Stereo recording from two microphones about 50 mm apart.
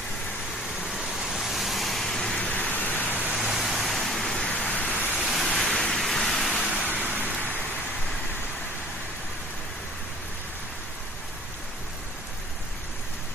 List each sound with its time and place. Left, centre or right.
0.8 s vehicle: centre
2.3 s vehicle: left
3.3 s vehicle: centre
4.5 s rain: left
5.5 s waves: centre
5.8 s vehicle: centre
6.9 s vehicle: right